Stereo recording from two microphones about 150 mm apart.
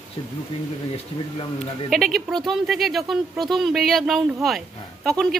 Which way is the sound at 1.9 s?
Centre (ahead or behind).